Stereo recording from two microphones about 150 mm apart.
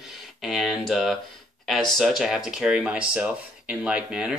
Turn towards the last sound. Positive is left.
turn(degrees=-5)  # may be behind; listen again after turning